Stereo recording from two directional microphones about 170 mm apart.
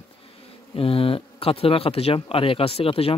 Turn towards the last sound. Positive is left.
turn(degrees=35)  # may be behind; listen again after turning